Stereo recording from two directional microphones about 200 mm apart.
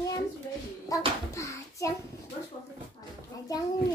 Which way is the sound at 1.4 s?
15° left (ahead or behind).